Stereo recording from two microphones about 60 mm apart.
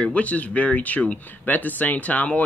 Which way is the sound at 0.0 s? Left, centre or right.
Left.